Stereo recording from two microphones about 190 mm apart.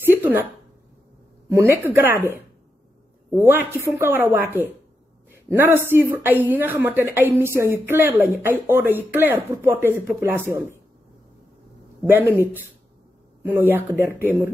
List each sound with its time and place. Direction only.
0.0 s a sound: 10° right (ahead or behind)
1.5 s speech: 15° right (ahead or behind)
3.3 s speech: 10° right (ahead or behind)
12.1 s speech: 10° right (ahead or behind)